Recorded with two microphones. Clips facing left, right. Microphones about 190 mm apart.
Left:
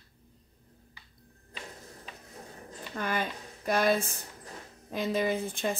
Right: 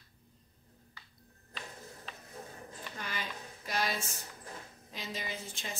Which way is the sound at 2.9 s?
55° left (ahead or behind).